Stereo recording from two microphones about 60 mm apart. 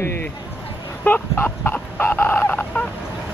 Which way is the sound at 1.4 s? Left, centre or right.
Left.